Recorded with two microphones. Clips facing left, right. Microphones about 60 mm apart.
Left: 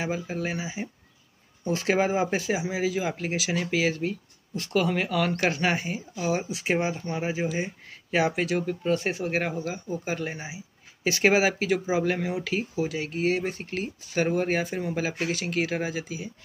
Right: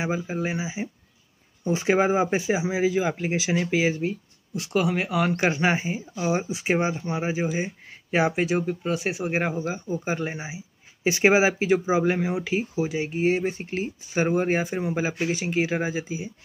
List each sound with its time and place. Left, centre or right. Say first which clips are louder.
0.0 s speech: right 2 dB; centre